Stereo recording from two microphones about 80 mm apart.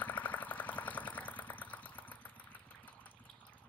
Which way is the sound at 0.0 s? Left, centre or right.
Centre.